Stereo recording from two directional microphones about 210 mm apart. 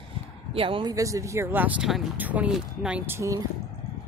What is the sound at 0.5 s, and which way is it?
Speech, 25° right (ahead or behind).